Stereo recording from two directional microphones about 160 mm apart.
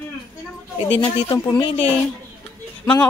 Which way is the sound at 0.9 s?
35° left (ahead or behind).